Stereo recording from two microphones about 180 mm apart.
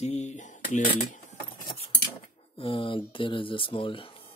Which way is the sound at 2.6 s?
30° left (ahead or behind).